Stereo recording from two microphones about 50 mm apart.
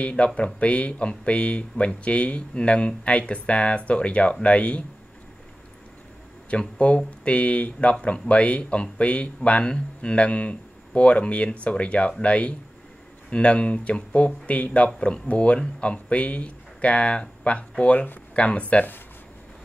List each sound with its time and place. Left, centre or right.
0.0 s speech: left
6.5 s speech: left
18.3 s speech: left